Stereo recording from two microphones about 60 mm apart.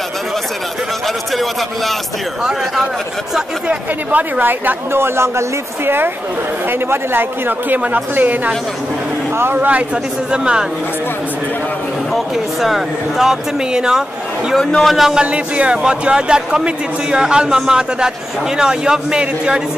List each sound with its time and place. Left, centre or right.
1.0 s a man's voice: centre
3.6 s speech: right
6.7 s speech: right
10.3 s a man's voice: centre
12.6 s a man's voice: centre
15.1 s a man's voice: centre